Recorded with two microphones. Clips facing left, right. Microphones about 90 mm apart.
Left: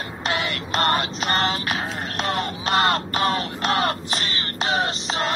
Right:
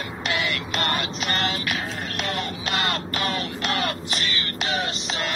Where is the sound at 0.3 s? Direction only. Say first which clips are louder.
Left 2 dB; 35° left (ahead or behind).